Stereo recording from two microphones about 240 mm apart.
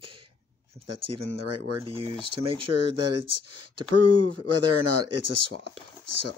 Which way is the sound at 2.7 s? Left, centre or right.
Right.